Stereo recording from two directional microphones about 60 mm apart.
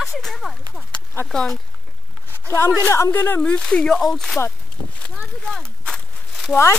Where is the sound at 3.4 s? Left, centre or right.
Centre.